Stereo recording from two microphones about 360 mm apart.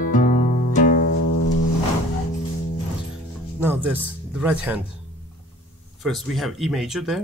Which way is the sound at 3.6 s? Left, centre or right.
Centre.